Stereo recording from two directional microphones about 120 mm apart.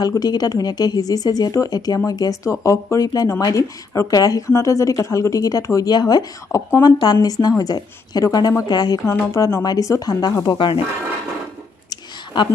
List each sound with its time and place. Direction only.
0.0 s a woman's voice: 30° left (ahead or behind)